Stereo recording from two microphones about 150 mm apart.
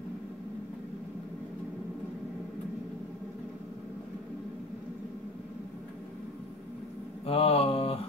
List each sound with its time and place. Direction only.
7.2 s mantra: 40° left (ahead or behind)